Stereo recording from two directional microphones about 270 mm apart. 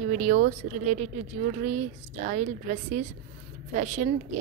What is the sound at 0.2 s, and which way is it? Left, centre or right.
Speech, right.